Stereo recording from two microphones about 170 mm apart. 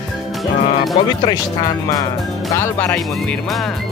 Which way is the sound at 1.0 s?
25° left (ahead or behind).